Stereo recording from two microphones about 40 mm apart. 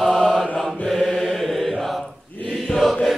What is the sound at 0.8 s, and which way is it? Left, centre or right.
Mantra, centre.